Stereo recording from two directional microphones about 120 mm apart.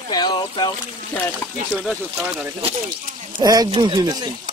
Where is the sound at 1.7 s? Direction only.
Centre (ahead or behind).